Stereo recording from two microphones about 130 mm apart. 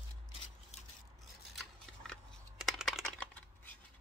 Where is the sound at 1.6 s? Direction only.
5° left (ahead or behind).